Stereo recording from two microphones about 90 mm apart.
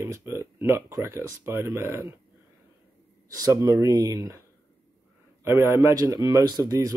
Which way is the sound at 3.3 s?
45° right (ahead or behind).